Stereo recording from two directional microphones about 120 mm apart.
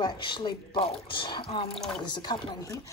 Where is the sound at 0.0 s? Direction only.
40° left (ahead or behind).